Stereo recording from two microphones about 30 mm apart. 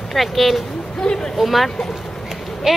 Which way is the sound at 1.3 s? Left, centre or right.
Centre.